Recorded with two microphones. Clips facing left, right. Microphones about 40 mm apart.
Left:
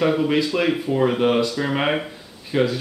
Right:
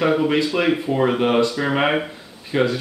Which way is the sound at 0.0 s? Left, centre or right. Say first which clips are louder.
Right 1 dB; centre.